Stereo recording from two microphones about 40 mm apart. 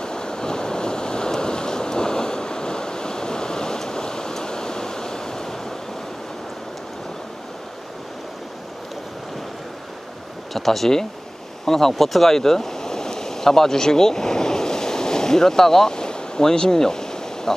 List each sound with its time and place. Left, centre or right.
0.0 s waves: centre
10.5 s speech: centre
11.6 s a sound: centre